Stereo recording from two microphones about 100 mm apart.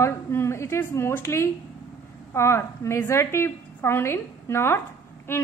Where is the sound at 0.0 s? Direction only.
25° left (ahead or behind).